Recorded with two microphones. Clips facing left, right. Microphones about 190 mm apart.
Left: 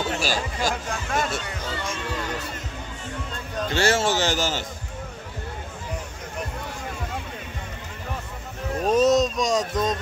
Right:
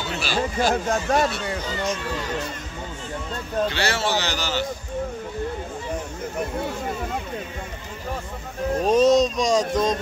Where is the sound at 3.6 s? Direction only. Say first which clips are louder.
Left 6 dB; 45° left (ahead or behind).